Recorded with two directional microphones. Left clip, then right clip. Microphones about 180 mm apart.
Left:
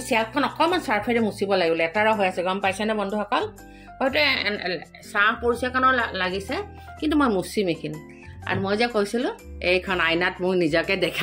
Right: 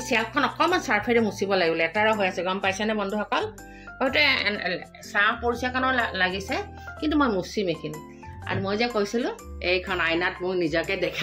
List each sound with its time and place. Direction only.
0.0 s a woman's voice: 20° left (ahead or behind); by 11.1 s 45° left (ahead or behind)